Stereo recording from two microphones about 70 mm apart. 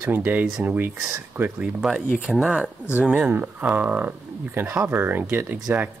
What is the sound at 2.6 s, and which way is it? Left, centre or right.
Speech, centre.